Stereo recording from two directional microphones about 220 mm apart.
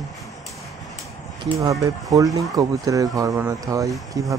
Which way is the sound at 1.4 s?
15° right (ahead or behind).